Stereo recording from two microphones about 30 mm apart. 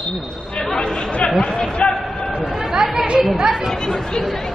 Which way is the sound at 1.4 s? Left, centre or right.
Left.